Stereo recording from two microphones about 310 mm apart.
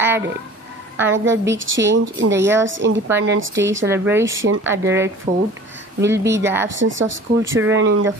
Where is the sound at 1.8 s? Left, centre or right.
Right.